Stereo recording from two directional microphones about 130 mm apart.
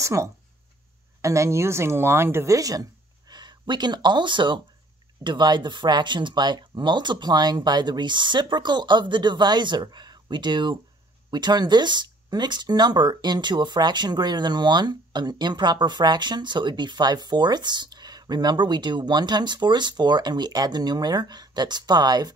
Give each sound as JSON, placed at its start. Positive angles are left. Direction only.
{"t": 0.0, "sound": "speech", "side_deg": -25}